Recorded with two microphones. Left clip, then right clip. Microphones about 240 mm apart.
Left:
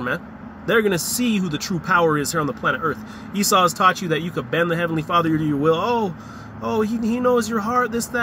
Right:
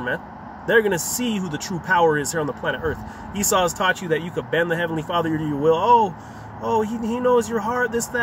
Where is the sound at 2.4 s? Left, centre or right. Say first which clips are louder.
Left 3 dB; right.